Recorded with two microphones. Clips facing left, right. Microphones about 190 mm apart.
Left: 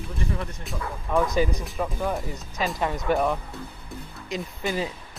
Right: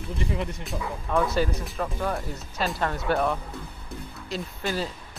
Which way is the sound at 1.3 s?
10° left (ahead or behind).